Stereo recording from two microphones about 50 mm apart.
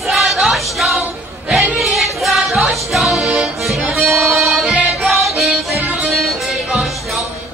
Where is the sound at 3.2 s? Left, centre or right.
Right.